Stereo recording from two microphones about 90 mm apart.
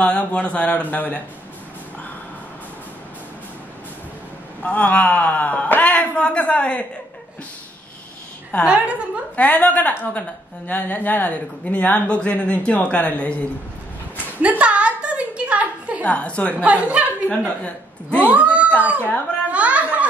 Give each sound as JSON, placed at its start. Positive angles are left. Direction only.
{"t": 0.0, "sound": "speech", "side_deg": 15}
{"t": 4.6, "sound": "speech", "side_deg": 15}
{"t": 8.6, "sound": "a woman's voice", "side_deg": -15}
{"t": 9.4, "sound": "a woman's voice", "side_deg": 20}
{"t": 14.4, "sound": "a sound", "side_deg": -15}
{"t": 16.0, "sound": "speech", "side_deg": 15}
{"t": 16.5, "sound": "a woman's voice", "side_deg": -15}
{"t": 17.6, "sound": "a woman's voice", "side_deg": 15}
{"t": 18.3, "sound": "cat", "side_deg": -15}
{"t": 18.7, "sound": "speech", "side_deg": 20}
{"t": 19.5, "sound": "a woman's voice", "side_deg": -15}